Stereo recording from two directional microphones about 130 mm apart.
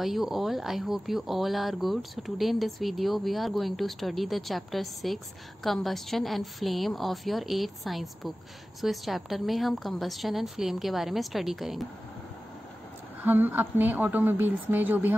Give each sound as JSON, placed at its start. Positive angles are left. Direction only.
{"t": 0.0, "sound": "speech", "side_deg": 0}
{"t": 13.2, "sound": "a woman's voice", "side_deg": -15}